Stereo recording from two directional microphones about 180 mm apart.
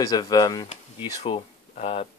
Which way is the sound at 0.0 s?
20° left (ahead or behind).